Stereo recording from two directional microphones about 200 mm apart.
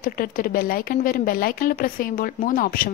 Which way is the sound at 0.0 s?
45° left (ahead or behind).